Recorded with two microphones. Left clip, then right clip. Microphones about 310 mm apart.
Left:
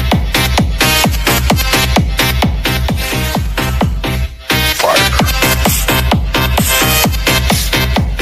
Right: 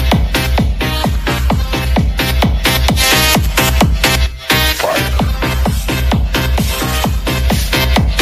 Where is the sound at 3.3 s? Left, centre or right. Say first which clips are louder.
Right 4 dB; right.